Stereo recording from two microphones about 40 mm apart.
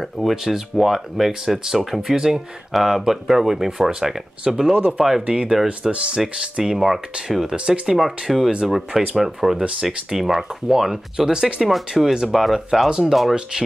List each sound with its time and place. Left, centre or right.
0.0 s speech: centre
5.2 s speech: right
6.6 s speech: centre
11.6 s speech: centre